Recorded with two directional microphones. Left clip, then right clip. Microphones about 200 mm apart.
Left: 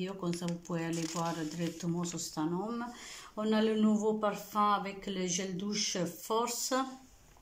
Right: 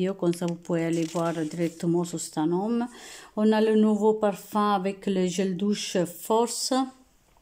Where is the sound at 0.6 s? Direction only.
40° right (ahead or behind).